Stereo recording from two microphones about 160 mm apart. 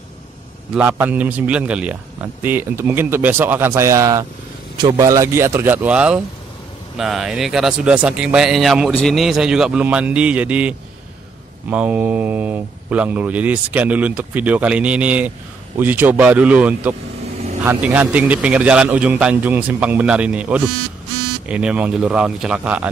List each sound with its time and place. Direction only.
0.7 s a man's voice: 10° right (ahead or behind)